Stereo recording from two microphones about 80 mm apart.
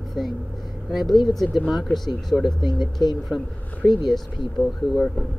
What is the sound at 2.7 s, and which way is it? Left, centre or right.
Speech, left.